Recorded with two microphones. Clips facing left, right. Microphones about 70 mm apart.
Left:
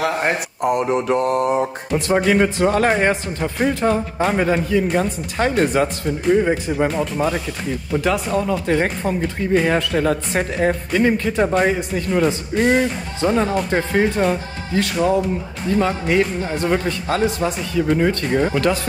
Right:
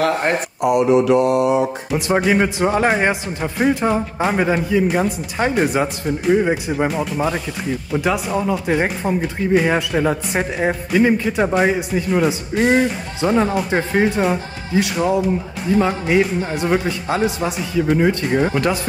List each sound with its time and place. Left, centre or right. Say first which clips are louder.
0.7 s mantra: right 4 dB; left
1.9 s speech: left 2 dB; centre